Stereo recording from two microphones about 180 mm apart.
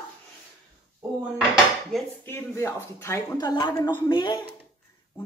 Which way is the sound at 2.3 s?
15° left (ahead or behind).